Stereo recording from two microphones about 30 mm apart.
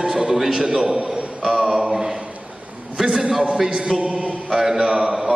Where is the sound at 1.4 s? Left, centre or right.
Centre.